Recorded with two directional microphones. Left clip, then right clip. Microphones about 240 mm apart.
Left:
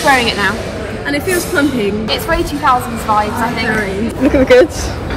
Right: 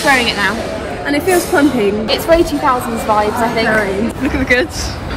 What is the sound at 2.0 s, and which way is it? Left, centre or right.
Speech, centre.